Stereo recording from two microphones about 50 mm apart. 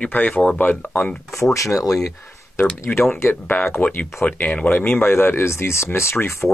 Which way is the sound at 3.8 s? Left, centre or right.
Left.